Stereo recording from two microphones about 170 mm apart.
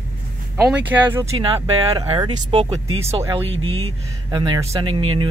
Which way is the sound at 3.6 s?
35° right (ahead or behind).